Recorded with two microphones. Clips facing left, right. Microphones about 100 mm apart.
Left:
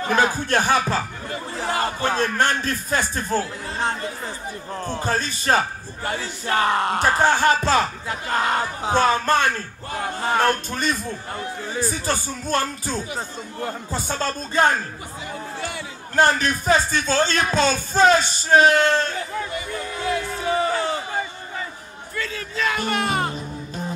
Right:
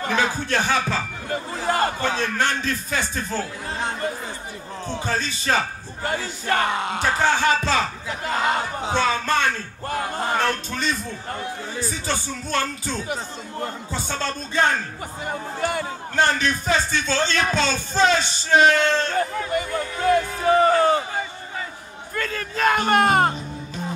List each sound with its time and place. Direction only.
0.1 s speech: 45° left (ahead or behind)
2.0 s speech: 50° left (ahead or behind)
6.0 s speech: 50° right (ahead or behind)
6.6 s speech: 45° left (ahead or behind)
13.9 s speech: 45° left (ahead or behind)
15.2 s speech: 50° right (ahead or behind)
16.2 s speech: 45° left (ahead or behind)
19.0 s a sound: 50° right (ahead or behind)
22.1 s speech: 50° right (ahead or behind)